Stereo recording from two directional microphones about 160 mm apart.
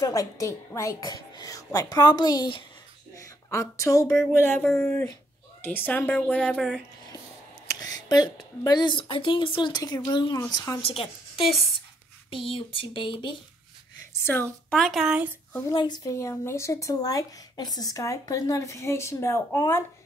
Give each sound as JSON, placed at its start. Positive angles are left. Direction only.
{"t": 0.0, "sound": "a woman's voice", "side_deg": 20}
{"t": 7.6, "sound": "speech", "side_deg": 25}
{"t": 10.8, "sound": "speech", "side_deg": 35}
{"t": 14.2, "sound": "speech", "side_deg": 10}
{"t": 15.7, "sound": "speech", "side_deg": 30}